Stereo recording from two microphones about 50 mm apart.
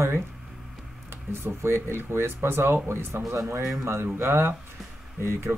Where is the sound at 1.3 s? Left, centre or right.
Right.